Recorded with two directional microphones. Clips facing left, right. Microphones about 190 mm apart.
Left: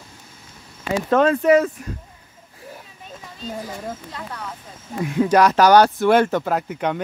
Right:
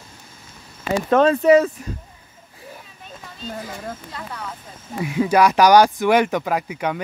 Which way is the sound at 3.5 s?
Centre (ahead or behind).